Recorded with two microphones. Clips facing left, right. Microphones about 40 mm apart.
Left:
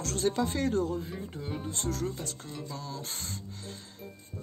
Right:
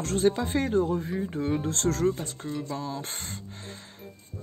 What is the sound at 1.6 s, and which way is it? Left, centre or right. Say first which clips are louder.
Speech: right 7 dB; right.